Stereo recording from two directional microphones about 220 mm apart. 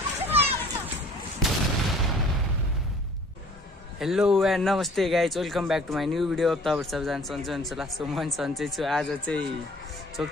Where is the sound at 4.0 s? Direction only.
Centre (ahead or behind).